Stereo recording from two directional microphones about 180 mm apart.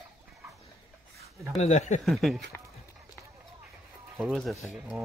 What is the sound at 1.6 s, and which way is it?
Speech, 40° left (ahead or behind).